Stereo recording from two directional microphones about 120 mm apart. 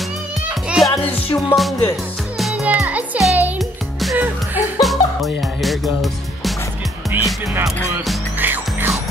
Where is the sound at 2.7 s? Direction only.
10° right (ahead or behind).